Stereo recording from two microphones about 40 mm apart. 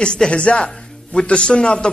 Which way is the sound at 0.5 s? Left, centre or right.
Centre.